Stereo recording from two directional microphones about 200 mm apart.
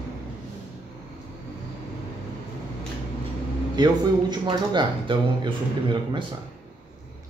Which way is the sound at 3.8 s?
20° right (ahead or behind).